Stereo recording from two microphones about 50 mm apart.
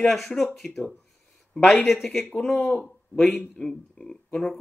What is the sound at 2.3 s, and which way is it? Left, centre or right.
Speech, centre.